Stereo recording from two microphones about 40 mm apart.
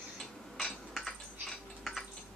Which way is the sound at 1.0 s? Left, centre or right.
Centre.